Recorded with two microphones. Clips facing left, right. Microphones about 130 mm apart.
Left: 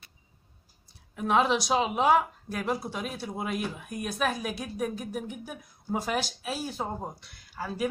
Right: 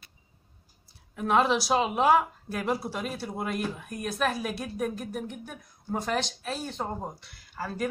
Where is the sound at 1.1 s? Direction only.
Centre (ahead or behind).